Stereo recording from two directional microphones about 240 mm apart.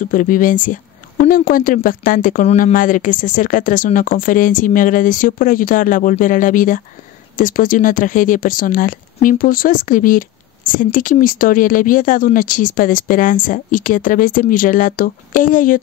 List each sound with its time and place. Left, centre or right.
0.0 s a woman's voice: left